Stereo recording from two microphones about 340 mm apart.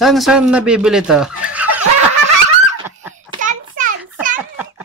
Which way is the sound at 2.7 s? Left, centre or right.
Centre.